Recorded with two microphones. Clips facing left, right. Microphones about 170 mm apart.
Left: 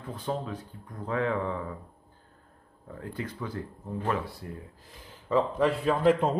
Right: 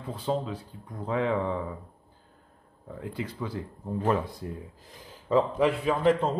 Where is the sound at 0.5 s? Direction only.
15° right (ahead or behind).